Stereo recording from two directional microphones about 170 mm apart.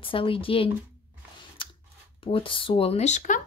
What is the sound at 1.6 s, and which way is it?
Scissors, 30° left (ahead or behind).